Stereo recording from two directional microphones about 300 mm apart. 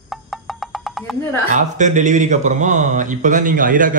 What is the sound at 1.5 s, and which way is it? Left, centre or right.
Speech, right.